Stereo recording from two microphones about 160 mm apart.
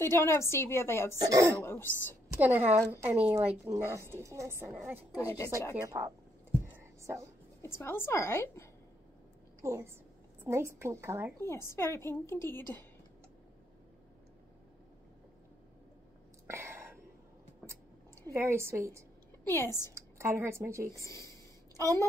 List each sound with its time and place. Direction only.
0.0 s a woman's voice: 15° left (ahead or behind)
1.2 s speech: 20° right (ahead or behind)
1.6 s a woman's voice: 15° left (ahead or behind)
2.2 s a woman's voice: 15° right (ahead or behind)
6.6 s whispering: 15° right (ahead or behind)
7.6 s a woman's voice: 15° left (ahead or behind)
9.6 s a woman's voice: 15° right (ahead or behind)
11.3 s a woman's voice: 15° left (ahead or behind)
16.4 s whispering: 15° right (ahead or behind)
18.3 s a woman's voice: 15° right (ahead or behind)
19.4 s a woman's voice: 15° left (ahead or behind)
19.9 s a woman's voice: 15° right (ahead or behind)
20.9 s a woman's voice: 20° left (ahead or behind)